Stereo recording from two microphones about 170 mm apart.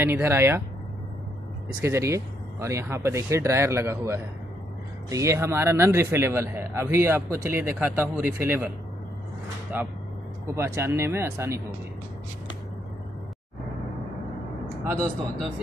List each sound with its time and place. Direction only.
0.0 s a man's voice: 15° right (ahead or behind)
1.8 s a man's voice: 15° right (ahead or behind)
9.7 s a man's voice: 10° right (ahead or behind)